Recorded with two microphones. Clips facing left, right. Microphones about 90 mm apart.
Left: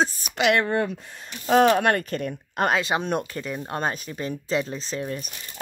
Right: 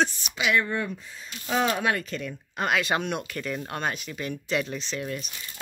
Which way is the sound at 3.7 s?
30° left (ahead or behind).